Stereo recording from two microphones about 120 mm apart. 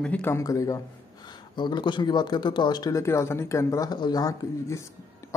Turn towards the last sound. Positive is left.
turn(degrees=30)  # may be behind; listen again after turning